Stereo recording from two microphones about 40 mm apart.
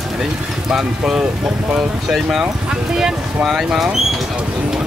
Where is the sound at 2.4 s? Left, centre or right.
Centre.